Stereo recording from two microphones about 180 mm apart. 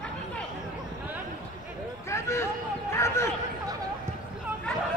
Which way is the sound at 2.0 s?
15° left (ahead or behind).